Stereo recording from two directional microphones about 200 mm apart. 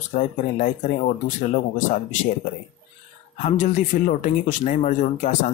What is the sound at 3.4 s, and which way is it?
Speech, 40° left (ahead or behind).